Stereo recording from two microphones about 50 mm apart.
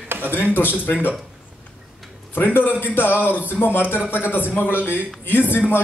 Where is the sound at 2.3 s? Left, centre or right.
Left.